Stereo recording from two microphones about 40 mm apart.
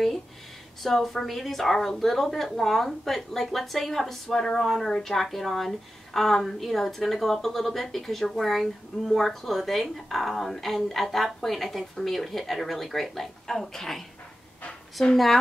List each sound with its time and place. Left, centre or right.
0.8 s speech: centre
15.0 s speech: centre